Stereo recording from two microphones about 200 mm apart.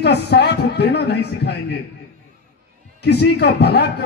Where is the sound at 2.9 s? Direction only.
55° left (ahead or behind).